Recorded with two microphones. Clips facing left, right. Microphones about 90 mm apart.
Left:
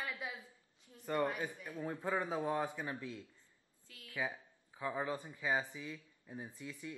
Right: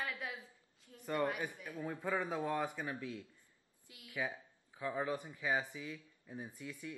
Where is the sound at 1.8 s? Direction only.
15° left (ahead or behind).